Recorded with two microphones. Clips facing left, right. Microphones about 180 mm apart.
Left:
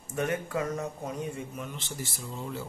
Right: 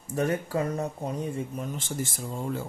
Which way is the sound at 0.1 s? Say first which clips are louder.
Right 3 dB; 35° right (ahead or behind).